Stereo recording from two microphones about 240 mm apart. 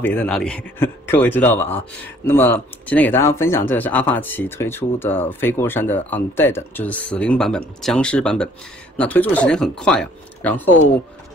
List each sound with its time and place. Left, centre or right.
0.0 s speech: centre